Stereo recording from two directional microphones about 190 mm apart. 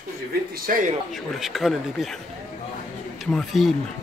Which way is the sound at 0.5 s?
50° right (ahead or behind).